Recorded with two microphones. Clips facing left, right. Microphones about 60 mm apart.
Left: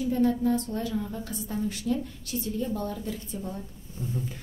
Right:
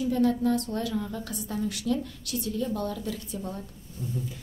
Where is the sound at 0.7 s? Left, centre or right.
Right.